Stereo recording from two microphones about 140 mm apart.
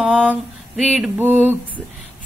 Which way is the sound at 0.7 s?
5° right (ahead or behind).